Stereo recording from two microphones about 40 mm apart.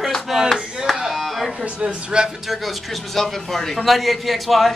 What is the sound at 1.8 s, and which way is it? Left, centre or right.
Speech, right.